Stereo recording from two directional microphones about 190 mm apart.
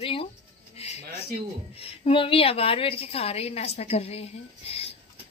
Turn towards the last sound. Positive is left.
turn(degrees=30)  # may be behind; listen again after turning